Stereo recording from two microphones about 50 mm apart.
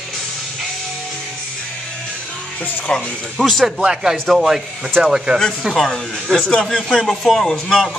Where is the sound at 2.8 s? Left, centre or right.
Centre.